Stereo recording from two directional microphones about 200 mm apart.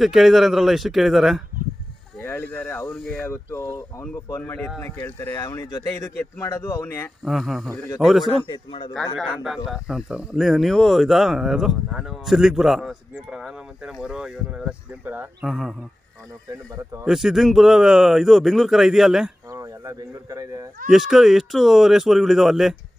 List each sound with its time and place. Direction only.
0.0 s speech: centre (ahead or behind)
2.2 s speech: 10° left (ahead or behind)
7.2 s speech: centre (ahead or behind)
8.3 s a man's voice: 25° left (ahead or behind)
9.2 s speech: 5° right (ahead or behind)
17.0 s speech: centre (ahead or behind)
19.5 s speech: 15° right (ahead or behind)
20.9 s speech: centre (ahead or behind)